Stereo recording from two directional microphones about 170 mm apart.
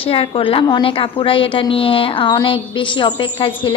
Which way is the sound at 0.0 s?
35° left (ahead or behind).